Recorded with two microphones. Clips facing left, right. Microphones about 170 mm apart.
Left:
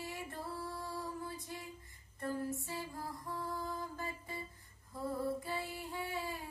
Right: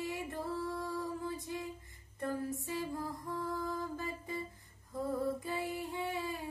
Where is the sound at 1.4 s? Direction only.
20° right (ahead or behind).